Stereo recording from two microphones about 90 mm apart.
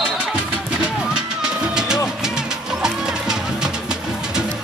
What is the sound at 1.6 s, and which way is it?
Music, 5° right (ahead or behind).